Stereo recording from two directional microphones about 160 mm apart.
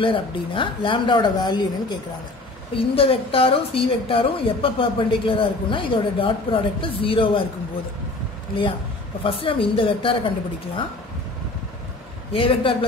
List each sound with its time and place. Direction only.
0.0 s a woman's voice: 30° left (ahead or behind)
9.2 s a woman's voice: 35° left (ahead or behind)
12.3 s a woman's voice: 35° left (ahead or behind)